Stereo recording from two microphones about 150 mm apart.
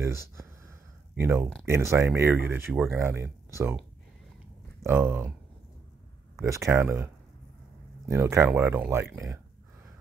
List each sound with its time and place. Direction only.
1.1 s speech: 15° right (ahead or behind)
4.8 s speech: 15° right (ahead or behind)
6.4 s speech: 20° right (ahead or behind)
8.1 s speech: 20° right (ahead or behind)